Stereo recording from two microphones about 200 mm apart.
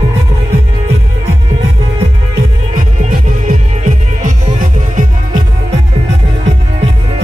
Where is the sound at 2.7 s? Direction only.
40° right (ahead or behind).